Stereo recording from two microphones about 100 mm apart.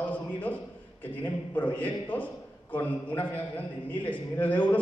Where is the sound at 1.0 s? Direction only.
20° left (ahead or behind).